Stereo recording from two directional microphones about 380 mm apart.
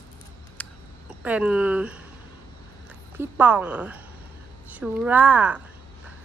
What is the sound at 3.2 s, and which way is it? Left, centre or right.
Speech, centre.